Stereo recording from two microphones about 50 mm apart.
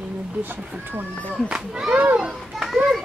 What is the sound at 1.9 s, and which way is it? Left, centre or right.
Speech, right.